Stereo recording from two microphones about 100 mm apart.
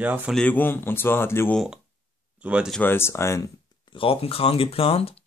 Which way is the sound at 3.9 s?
70° left (ahead or behind).